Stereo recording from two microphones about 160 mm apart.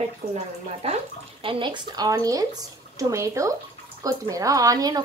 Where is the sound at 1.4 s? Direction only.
30° right (ahead or behind).